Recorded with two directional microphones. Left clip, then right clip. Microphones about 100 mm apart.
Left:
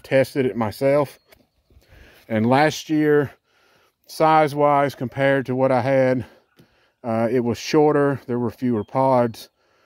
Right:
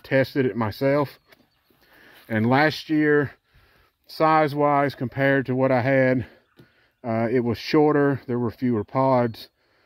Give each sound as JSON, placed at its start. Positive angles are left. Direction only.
{"t": 0.0, "sound": "speech", "side_deg": 30}
{"t": 1.9, "sound": "a sound", "side_deg": 45}
{"t": 2.5, "sound": "speech", "side_deg": 45}
{"t": 4.1, "sound": "speech", "side_deg": 45}
{"t": 7.0, "sound": "speech", "side_deg": 35}